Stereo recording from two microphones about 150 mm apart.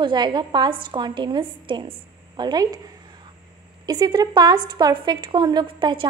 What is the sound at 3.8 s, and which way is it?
A woman's voice, 25° right (ahead or behind).